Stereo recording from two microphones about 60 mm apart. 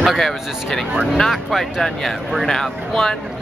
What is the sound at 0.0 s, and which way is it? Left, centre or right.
Speech, centre.